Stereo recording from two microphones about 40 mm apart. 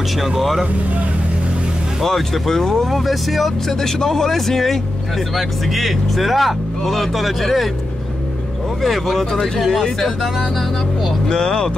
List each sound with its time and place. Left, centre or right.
0.2 s speech: centre
2.0 s speech: centre
8.8 s speech: centre
11.2 s speech: centre